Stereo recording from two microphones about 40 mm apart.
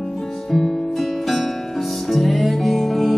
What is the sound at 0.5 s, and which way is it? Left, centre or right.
Music, centre.